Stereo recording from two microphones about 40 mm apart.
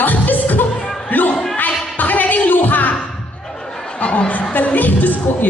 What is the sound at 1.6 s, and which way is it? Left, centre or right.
Music, left.